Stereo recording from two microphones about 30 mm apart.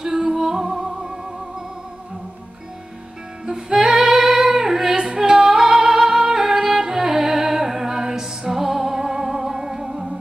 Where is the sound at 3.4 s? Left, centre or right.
Centre.